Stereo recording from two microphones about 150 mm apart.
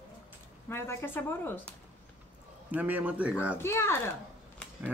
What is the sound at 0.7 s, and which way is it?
Speech, 15° left (ahead or behind).